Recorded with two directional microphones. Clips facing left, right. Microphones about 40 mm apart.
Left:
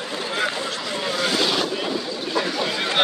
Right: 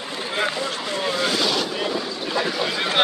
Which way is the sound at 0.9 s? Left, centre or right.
Centre.